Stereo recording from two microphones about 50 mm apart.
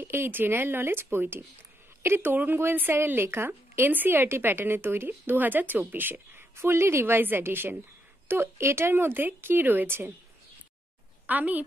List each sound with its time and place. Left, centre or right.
0.0 s a woman's voice: right
6.5 s a woman's voice: right
11.2 s a woman's voice: right